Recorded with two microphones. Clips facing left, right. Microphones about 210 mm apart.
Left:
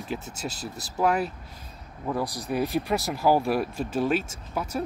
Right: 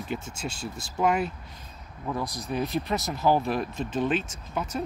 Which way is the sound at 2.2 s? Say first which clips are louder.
Left 3 dB; 35° left (ahead or behind).